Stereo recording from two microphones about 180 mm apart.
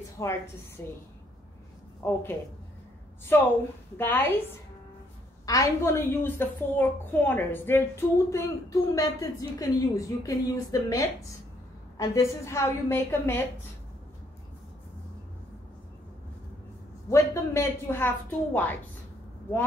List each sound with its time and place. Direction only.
0.2 s a child's voice: 15° left (ahead or behind)
2.0 s a child's voice: 15° left (ahead or behind)
3.3 s a child's voice: 10° left (ahead or behind)
5.4 s a child's voice: 20° left (ahead or behind)
17.1 s a child's voice: 15° left (ahead or behind)